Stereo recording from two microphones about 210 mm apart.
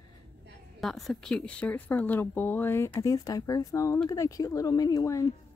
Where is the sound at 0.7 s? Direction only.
Centre (ahead or behind).